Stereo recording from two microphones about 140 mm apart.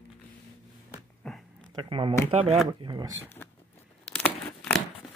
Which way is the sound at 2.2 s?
40° right (ahead or behind).